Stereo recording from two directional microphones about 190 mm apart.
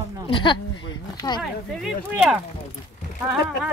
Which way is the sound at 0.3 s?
25° left (ahead or behind).